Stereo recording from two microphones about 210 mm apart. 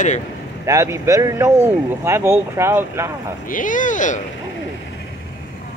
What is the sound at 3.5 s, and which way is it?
Speech, 40° left (ahead or behind).